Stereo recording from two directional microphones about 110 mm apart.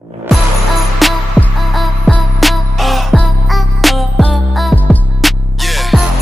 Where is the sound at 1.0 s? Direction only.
Centre (ahead or behind).